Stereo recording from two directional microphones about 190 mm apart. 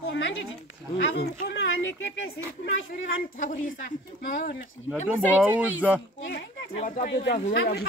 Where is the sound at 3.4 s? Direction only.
45° left (ahead or behind).